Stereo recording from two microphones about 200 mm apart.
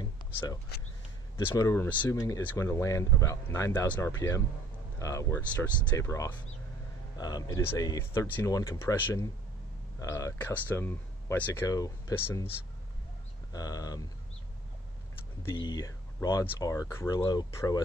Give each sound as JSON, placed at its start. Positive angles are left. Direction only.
{"t": 0.0, "sound": "a sound", "side_deg": 20}
{"t": 1.5, "sound": "speech", "side_deg": 15}
{"t": 13.5, "sound": "speech", "side_deg": 20}
{"t": 15.5, "sound": "speech", "side_deg": 20}